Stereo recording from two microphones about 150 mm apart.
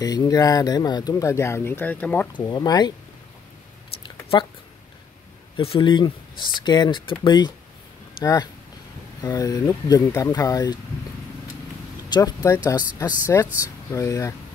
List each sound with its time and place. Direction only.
0.0 s speech: 25° left (ahead or behind)
2.3 s speech: 25° left (ahead or behind)
4.0 s a sound: 30° left (ahead or behind)
5.6 s speech: 35° left (ahead or behind)
12.1 s speech: 25° left (ahead or behind)